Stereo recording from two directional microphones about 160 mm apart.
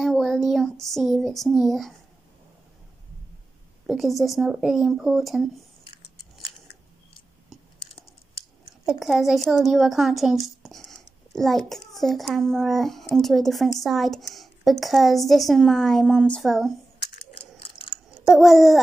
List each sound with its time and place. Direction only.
0.0 s child singing: centre (ahead or behind)
3.8 s a woman's voice: centre (ahead or behind)
8.8 s a woman's voice: centre (ahead or behind)
17.6 s chewing: 35° left (ahead or behind)
18.2 s babbling: centre (ahead or behind)